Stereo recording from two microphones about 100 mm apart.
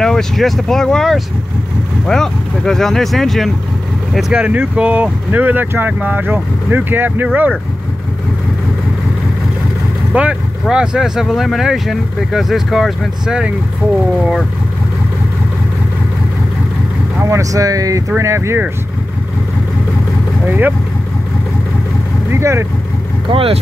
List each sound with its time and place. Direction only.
0.0 s speech: 5° left (ahead or behind); by 7.2 s 20° right (ahead or behind)
10.1 s speech: 10° right (ahead or behind)
17.2 s speech: 30° right (ahead or behind)
20.4 s speech: 20° right (ahead or behind)
22.3 s speech: 25° right (ahead or behind)
23.3 s speech: 70° right (ahead or behind)